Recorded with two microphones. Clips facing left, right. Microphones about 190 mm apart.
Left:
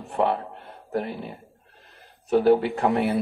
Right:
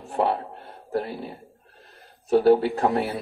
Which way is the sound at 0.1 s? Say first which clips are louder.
Even; 35° right (ahead or behind).